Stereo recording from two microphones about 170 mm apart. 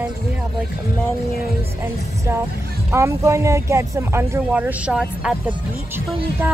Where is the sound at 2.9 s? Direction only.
15° right (ahead or behind).